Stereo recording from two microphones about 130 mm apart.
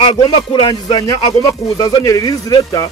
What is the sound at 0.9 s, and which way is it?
Speech, 30° left (ahead or behind).